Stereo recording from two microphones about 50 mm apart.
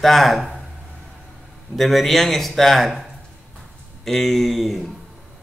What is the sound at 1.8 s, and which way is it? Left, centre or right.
A man's voice, centre.